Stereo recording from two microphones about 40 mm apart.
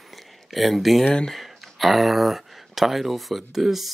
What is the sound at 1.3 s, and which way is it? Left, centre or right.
Speech, centre.